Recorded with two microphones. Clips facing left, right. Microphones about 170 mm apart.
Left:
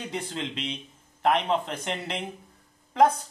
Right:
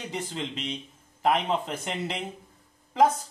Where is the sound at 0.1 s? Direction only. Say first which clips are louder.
Right 1 dB; centre (ahead or behind).